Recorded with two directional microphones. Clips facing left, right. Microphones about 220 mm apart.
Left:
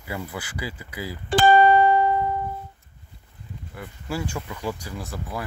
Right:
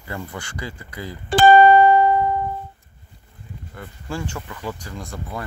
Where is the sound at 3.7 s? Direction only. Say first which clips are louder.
Even; 10° left (ahead or behind).